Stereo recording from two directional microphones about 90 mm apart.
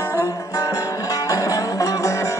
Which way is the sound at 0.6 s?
40° left (ahead or behind).